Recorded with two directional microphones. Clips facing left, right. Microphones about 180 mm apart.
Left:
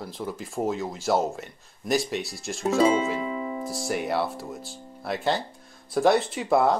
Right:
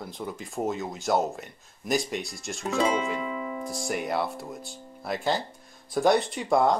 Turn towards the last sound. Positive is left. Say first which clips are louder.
# left 1 dB
turn(degrees=5)  # may be behind; listen again after turning